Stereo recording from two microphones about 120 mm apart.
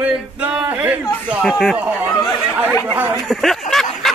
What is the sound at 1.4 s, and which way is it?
Speech, centre (ahead or behind).